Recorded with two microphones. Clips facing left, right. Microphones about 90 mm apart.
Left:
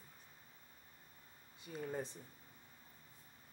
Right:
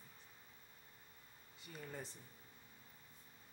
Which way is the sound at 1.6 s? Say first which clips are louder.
Left 7 dB; 20° left (ahead or behind).